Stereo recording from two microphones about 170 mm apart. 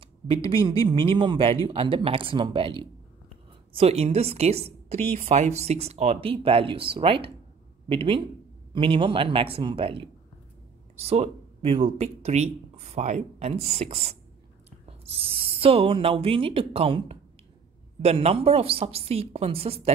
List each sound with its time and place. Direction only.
0.0 s speech: 30° right (ahead or behind)